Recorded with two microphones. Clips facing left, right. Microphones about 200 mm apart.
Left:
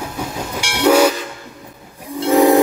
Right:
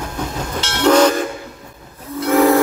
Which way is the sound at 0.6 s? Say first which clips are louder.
Even; 10° left (ahead or behind).